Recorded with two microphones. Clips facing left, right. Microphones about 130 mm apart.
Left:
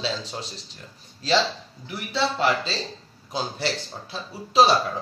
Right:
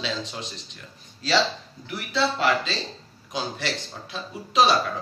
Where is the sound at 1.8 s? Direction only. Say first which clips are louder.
Right 1 dB; 25° left (ahead or behind).